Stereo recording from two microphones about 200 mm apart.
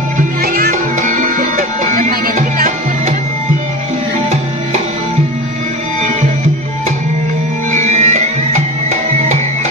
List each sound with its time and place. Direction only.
0.4 s music: 45° right (ahead or behind)
7.7 s music: 35° right (ahead or behind)